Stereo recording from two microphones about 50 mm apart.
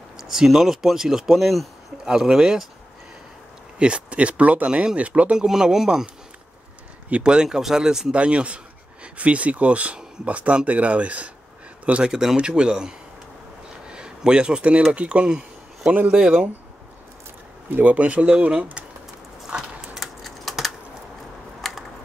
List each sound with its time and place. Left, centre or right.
0.2 s speech: centre
2.0 s speech: centre
3.7 s speech: right
5.4 s speech: centre
7.1 s speech: right
7.3 s speech: centre
8.1 s speech: right
12.0 s speech: centre
17.6 s speech: right
20.0 s typing: centre
21.5 s a sound: centre